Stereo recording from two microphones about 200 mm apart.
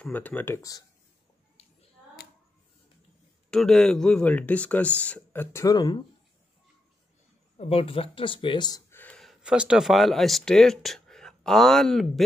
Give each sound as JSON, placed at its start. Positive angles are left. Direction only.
{"t": 0.0, "sound": "speech", "side_deg": 10}
{"t": 1.6, "sound": "a sound", "side_deg": 30}
{"t": 3.4, "sound": "speech", "side_deg": 5}
{"t": 7.5, "sound": "speech", "side_deg": 30}
{"t": 9.0, "sound": "speech", "side_deg": 5}